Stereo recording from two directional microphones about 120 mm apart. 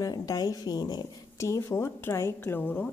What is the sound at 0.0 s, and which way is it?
Speech, 30° left (ahead or behind).